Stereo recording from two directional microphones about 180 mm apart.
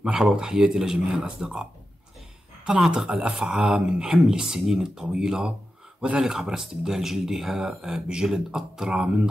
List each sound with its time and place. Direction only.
0.0 s speech: 5° right (ahead or behind)